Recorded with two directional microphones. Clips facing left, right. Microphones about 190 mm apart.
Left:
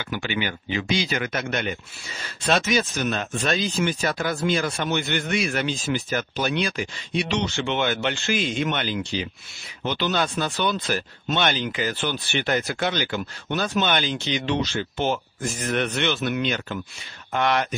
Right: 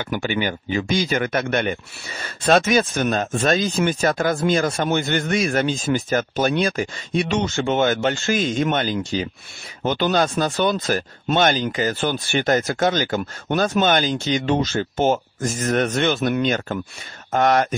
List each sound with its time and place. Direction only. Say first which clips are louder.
0.0 s speech: right 5 dB; 45° right (ahead or behind)